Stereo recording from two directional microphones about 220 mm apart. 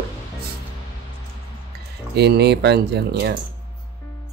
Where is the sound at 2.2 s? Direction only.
50° right (ahead or behind).